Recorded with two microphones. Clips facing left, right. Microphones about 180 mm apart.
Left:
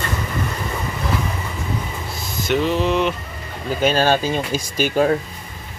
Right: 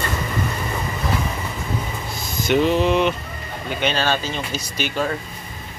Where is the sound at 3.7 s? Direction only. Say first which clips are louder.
Left 5 dB; 40° left (ahead or behind).